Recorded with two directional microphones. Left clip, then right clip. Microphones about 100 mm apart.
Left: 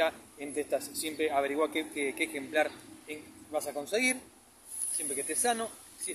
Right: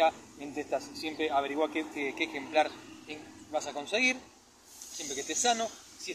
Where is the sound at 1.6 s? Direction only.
65° left (ahead or behind); by 4.2 s 45° left (ahead or behind).